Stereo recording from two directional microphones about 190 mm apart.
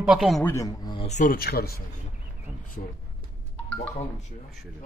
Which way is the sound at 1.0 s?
40° left (ahead or behind).